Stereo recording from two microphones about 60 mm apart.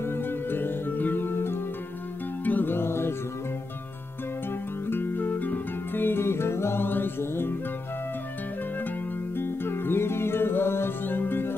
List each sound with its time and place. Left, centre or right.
0.0 s music: left
4.8 s music: left
9.4 s music: left